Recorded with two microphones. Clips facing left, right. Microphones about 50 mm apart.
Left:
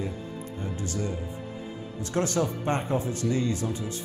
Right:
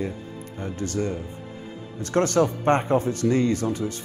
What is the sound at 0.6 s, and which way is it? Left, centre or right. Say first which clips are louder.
Speech: right 6 dB; right.